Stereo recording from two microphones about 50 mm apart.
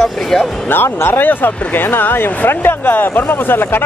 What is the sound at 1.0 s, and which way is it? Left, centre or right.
Speech, left.